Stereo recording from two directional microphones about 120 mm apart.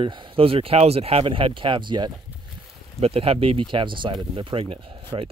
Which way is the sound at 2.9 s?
55° right (ahead or behind).